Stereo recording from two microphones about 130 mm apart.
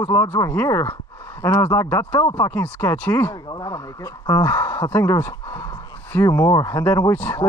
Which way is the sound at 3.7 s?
25° left (ahead or behind).